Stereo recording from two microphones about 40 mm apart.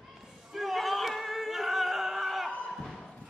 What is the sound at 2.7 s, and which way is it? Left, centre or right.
Thump, centre.